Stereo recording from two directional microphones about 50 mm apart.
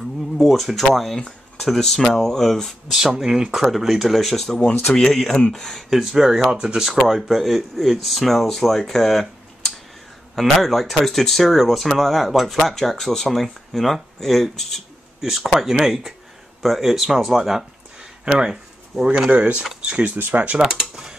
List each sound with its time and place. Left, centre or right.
0.4 s speech: centre
2.9 s speech: centre
5.9 s speech: centre
19.2 s speech: right
20.9 s mechanisms: centre